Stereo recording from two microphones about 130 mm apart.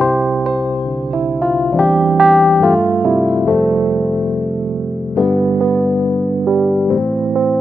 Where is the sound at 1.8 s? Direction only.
10° left (ahead or behind).